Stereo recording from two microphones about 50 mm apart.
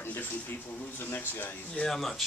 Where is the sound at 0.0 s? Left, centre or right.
Left.